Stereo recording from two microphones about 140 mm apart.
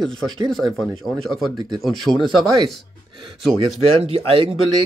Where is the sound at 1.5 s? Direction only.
30° right (ahead or behind).